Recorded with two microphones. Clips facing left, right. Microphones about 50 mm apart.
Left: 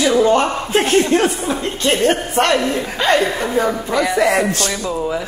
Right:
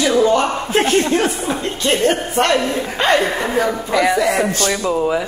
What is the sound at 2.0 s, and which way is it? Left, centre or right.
Speech, left.